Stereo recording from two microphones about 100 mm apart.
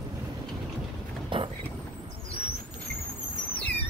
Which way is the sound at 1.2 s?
60° right (ahead or behind).